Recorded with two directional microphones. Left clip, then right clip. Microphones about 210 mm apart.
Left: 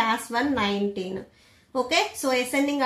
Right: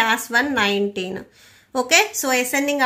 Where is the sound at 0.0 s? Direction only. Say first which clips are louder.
Right 6 dB; 40° right (ahead or behind).